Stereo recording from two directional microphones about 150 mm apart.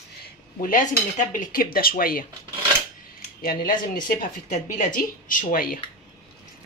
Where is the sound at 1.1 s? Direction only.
60° left (ahead or behind); by 2.2 s 75° left (ahead or behind).